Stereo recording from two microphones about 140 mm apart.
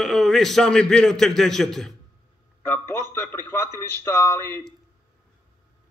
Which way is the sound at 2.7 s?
15° left (ahead or behind).